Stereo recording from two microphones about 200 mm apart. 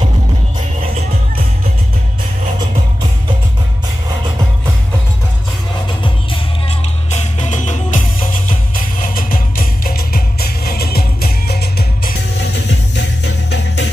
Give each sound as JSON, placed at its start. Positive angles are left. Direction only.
{"t": 7.1, "sound": "music", "side_deg": 35}
{"t": 9.0, "sound": "music", "side_deg": 45}